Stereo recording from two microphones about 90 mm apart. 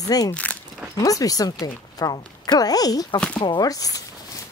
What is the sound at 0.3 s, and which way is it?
Speech, 15° left (ahead or behind).